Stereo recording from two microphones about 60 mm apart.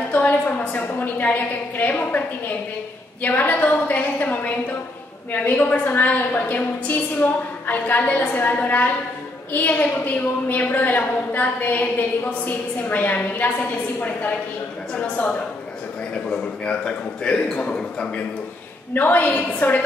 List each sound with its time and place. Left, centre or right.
0.1 s a woman's voice: left
15.0 s a woman's voice: left
18.9 s a woman's voice: left